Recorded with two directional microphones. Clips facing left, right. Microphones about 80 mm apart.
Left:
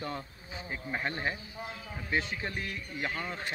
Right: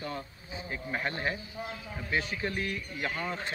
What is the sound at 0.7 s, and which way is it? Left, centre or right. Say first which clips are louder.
A man's voice: right 1 dB; centre.